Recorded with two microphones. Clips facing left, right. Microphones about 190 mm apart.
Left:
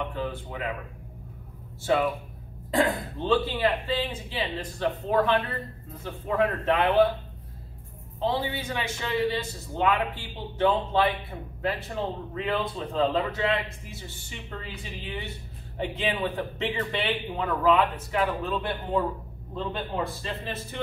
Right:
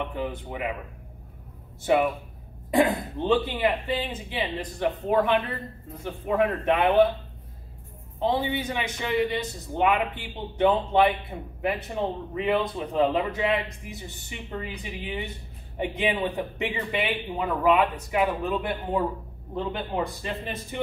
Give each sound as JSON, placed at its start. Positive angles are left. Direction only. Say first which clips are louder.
{"t": 0.1, "sound": "a man's voice", "louder": "right 1 dB", "side_deg": -15}
{"t": 1.8, "sound": "a man's voice", "louder": "right 2 dB", "side_deg": -15}
{"t": 3.2, "sound": "a man's voice", "louder": "right 1 dB", "side_deg": -15}
{"t": 8.2, "sound": "a man's voice", "louder": "right 3 dB", "side_deg": -20}